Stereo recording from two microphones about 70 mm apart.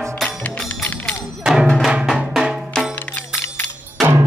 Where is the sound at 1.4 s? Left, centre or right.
Centre.